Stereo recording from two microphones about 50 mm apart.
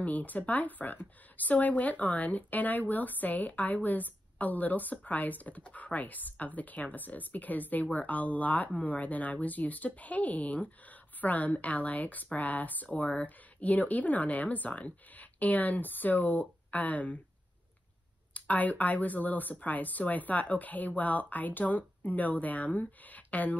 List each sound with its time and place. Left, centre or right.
0.0 s speech: left
18.3 s speech: left